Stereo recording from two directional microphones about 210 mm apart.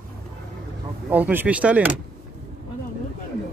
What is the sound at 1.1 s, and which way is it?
Speech, 10° right (ahead or behind).